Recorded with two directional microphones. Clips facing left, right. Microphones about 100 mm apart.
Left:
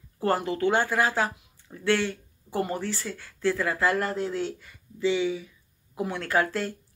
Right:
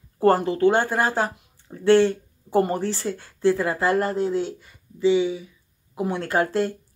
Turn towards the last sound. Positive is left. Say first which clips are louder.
# right 4 dB
turn(degrees=-25)  # may be behind; listen again after turning